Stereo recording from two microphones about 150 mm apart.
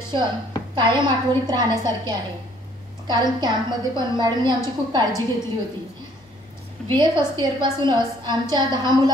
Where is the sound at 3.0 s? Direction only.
30° right (ahead or behind).